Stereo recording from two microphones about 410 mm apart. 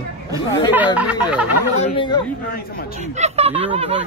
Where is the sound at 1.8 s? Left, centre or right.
Centre.